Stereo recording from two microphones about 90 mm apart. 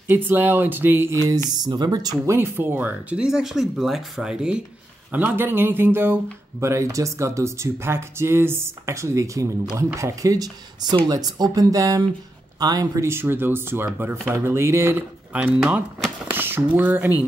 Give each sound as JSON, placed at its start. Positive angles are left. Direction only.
{"t": 0.1, "sound": "speech", "side_deg": -20}
{"t": 1.6, "sound": "speech", "side_deg": -50}
{"t": 2.2, "sound": "speech", "side_deg": -25}
{"t": 3.3, "sound": "speech", "side_deg": -5}
{"t": 5.1, "sound": "speech", "side_deg": -20}
{"t": 13.0, "sound": "speech", "side_deg": -25}
{"t": 15.3, "sound": "speech", "side_deg": -15}
{"t": 16.3, "sound": "speech", "side_deg": -25}